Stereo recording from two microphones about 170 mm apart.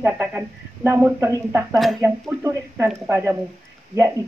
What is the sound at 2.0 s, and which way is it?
Speech, 15° right (ahead or behind).